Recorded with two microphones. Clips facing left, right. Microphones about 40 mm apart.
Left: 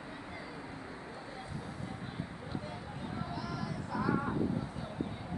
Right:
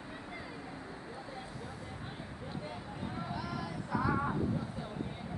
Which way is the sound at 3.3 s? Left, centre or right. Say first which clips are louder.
Even; centre.